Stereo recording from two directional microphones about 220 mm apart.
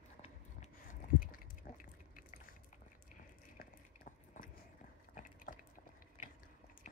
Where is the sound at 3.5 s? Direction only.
40° left (ahead or behind).